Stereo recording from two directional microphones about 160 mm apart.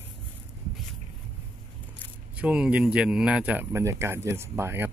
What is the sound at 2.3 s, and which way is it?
Speech, 10° right (ahead or behind).